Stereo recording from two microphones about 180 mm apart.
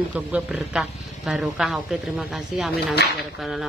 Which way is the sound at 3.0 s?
65° left (ahead or behind).